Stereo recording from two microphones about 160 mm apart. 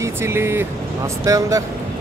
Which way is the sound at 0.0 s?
15° right (ahead or behind).